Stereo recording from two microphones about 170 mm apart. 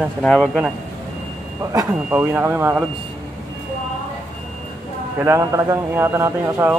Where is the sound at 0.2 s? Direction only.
5° left (ahead or behind).